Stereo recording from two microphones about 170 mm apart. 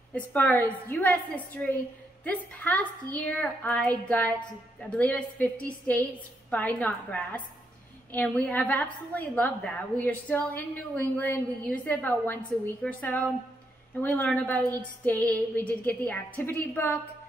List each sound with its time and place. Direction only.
0.1 s a woman's voice: 10° left (ahead or behind)